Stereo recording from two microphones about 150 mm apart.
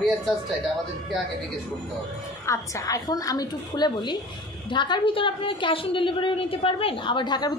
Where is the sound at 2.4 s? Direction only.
20° left (ahead or behind).